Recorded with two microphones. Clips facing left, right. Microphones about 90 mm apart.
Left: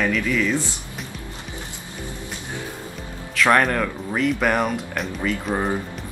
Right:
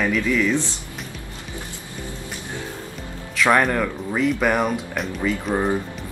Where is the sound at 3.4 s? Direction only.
Centre (ahead or behind).